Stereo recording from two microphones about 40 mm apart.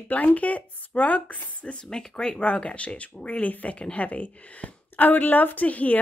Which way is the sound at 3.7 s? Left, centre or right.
Left.